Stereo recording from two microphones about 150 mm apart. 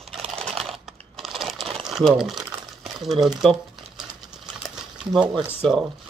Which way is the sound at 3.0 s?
Centre (ahead or behind).